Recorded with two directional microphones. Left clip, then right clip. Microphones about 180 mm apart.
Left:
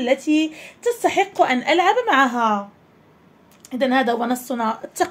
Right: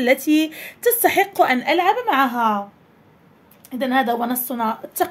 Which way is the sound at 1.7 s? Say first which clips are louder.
Left 1 dB; 10° left (ahead or behind).